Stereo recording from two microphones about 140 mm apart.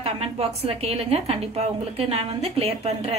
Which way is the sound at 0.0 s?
45° right (ahead or behind).